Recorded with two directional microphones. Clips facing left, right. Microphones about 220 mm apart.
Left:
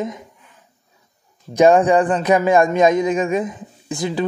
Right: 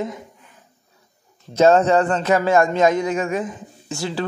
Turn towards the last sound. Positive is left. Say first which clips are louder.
# left 3 dB
turn(degrees=15)  # may be behind; listen again after turning